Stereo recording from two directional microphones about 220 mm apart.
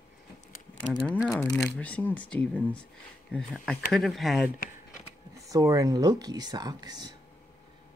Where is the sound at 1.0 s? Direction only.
5° left (ahead or behind).